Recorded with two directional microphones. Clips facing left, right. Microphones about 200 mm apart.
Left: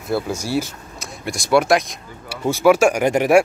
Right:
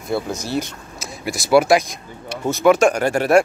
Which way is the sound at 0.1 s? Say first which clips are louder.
Left 1 dB; 10° left (ahead or behind).